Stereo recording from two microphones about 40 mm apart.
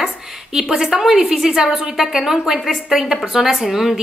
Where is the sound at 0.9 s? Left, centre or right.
Centre.